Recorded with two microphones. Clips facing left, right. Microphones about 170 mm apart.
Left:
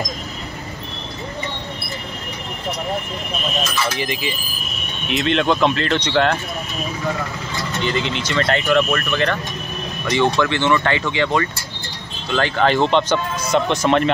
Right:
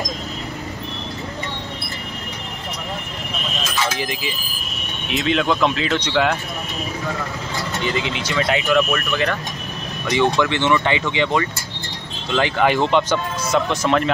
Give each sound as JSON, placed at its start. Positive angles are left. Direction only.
{"t": 3.7, "sound": "speech", "side_deg": 0}
{"t": 7.7, "sound": "speech", "side_deg": 0}
{"t": 10.4, "sound": "speech", "side_deg": -15}